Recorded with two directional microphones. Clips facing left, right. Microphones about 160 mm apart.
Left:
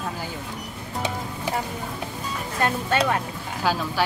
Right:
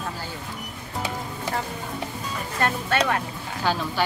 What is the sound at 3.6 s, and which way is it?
Speech, 5° left (ahead or behind).